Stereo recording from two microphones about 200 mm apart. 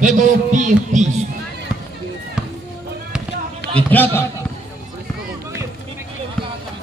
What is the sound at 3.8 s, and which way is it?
Speech, 10° left (ahead or behind).